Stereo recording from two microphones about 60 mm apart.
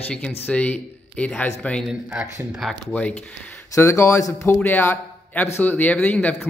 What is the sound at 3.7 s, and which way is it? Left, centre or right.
Speech, left.